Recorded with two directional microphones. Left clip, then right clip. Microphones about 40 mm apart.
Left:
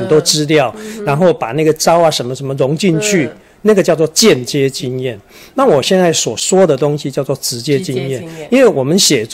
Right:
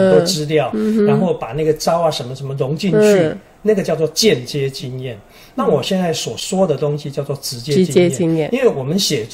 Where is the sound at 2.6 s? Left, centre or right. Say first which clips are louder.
Even; left.